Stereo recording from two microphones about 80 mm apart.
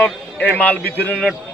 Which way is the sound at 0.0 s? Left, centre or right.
Centre.